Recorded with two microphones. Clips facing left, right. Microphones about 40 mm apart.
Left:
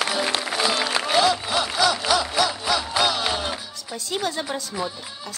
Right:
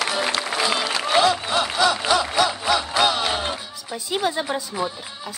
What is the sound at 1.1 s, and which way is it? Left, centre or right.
Music, centre.